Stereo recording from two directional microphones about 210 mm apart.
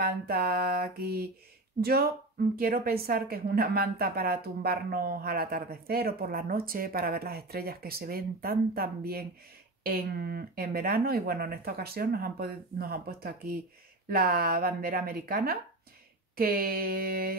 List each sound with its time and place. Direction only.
0.0 s a woman's voice: 45° right (ahead or behind)